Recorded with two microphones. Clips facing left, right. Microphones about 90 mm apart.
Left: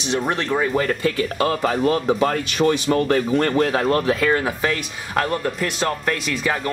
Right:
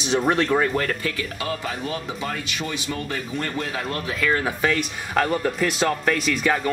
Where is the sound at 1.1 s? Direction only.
50° left (ahead or behind).